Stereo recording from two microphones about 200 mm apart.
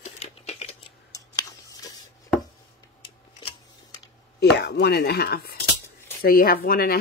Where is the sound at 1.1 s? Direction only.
20° left (ahead or behind).